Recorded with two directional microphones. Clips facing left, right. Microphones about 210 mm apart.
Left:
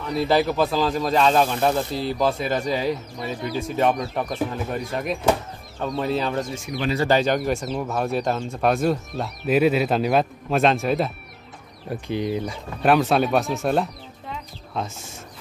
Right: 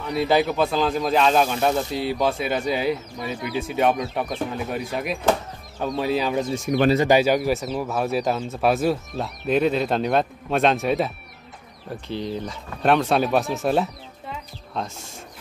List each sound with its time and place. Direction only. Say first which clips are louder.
0.0 s speech: even; centre (ahead or behind)
6.5 s speech: right 8 dB; 40° right (ahead or behind)
7.1 s speech: right 2 dB; 10° right (ahead or behind)
12.1 s speech: left 3 dB; 10° left (ahead or behind)